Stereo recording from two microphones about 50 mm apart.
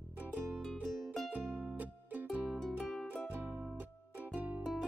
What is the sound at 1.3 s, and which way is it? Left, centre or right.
Music, right.